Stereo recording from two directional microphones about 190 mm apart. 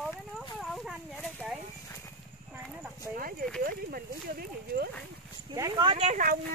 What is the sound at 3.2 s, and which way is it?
Speech, 50° right (ahead or behind).